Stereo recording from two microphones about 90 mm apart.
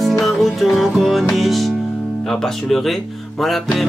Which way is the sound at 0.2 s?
Centre (ahead or behind).